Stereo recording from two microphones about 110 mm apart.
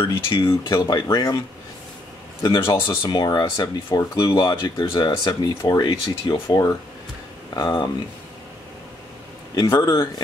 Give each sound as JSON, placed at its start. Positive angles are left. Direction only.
{"t": 0.0, "sound": "speech", "side_deg": 50}
{"t": 0.7, "sound": "speech", "side_deg": 35}
{"t": 2.7, "sound": "speech", "side_deg": 30}
{"t": 7.5, "sound": "speech", "side_deg": 40}
{"t": 9.6, "sound": "speech", "side_deg": 35}